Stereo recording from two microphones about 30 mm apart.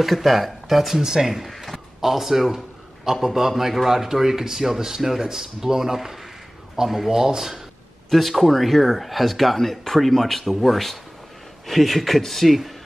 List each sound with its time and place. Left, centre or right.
0.0 s speech: centre
0.9 s speech: right
1.2 s a man's voice: centre
1.5 s a sound: centre
2.0 s a man's voice: centre
8.1 s speech: centre